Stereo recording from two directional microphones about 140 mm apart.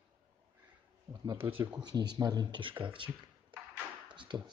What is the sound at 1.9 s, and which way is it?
Speech, 30° right (ahead or behind).